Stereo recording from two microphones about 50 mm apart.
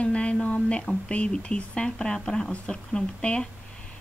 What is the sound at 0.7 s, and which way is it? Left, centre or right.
A woman's voice, left.